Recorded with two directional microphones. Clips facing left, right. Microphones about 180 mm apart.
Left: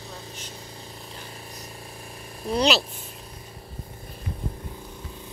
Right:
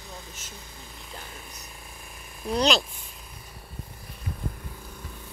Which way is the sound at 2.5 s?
5° left (ahead or behind).